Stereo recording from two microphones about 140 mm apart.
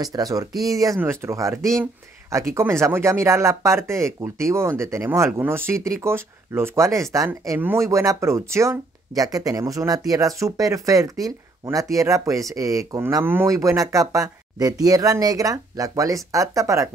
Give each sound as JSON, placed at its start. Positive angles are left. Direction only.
{"t": 0.0, "sound": "speech", "side_deg": -25}